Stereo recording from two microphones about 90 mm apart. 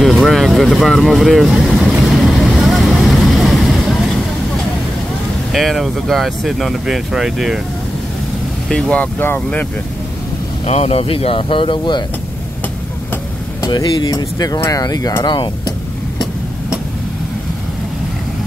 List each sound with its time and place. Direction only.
0.0 s vehicle: centre (ahead or behind)
5.5 s speech: centre (ahead or behind)
8.6 s speech: 5° left (ahead or behind)
8.9 s speech: 20° left (ahead or behind)
10.9 s speech: 90° left; by 12.0 s 65° left (ahead or behind)
13.7 s speech: 45° left (ahead or behind)
15.2 s speech: 60° left (ahead or behind)